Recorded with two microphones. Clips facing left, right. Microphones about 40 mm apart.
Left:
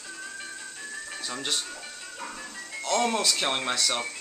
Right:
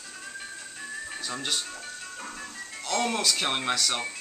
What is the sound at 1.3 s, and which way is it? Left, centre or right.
Speech, centre.